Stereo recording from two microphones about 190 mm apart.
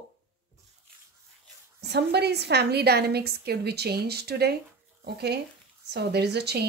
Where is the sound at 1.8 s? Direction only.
60° right (ahead or behind).